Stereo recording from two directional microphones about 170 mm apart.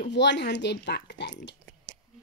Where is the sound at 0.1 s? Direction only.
90° left.